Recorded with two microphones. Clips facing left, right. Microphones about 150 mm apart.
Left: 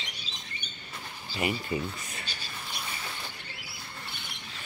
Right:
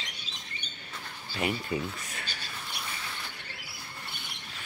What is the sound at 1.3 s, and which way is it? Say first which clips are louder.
Speech: even; centre (ahead or behind).